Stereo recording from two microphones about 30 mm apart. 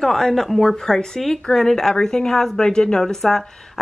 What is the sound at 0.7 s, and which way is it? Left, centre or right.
Speech, centre.